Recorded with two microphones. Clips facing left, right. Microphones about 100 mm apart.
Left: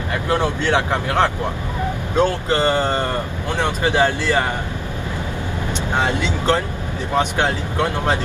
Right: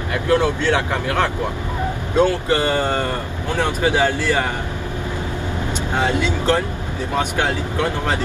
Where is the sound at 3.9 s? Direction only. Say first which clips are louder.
Left 1 dB; 20° left (ahead or behind).